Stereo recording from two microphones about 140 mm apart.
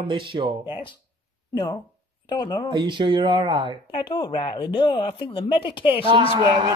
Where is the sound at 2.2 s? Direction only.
35° left (ahead or behind).